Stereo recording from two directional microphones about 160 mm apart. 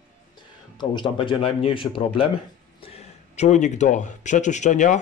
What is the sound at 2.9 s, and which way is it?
Speech, 45° left (ahead or behind).